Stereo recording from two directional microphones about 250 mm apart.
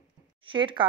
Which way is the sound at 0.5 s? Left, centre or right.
Centre.